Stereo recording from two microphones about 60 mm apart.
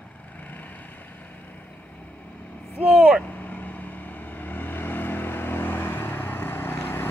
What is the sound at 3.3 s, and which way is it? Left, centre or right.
Vehicle, left.